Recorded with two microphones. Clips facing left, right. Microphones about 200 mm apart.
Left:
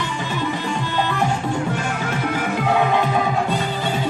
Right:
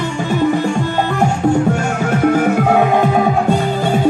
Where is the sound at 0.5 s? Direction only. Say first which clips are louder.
Right 7 dB; 45° right (ahead or behind).